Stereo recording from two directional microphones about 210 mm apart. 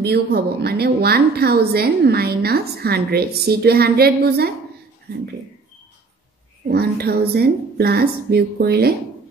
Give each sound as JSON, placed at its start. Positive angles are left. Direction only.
{"t": 0.0, "sound": "speech", "side_deg": -50}
{"t": 6.7, "sound": "speech", "side_deg": -50}